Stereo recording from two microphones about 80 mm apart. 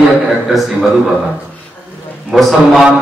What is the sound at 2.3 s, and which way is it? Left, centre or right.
Speech, centre.